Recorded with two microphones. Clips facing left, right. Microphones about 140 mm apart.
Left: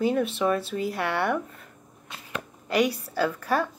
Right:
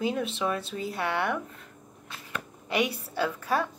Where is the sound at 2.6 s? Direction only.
Centre (ahead or behind).